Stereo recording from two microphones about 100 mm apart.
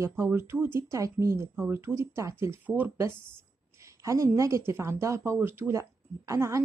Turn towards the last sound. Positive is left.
turn(degrees=-30)  # may be behind; listen again after turning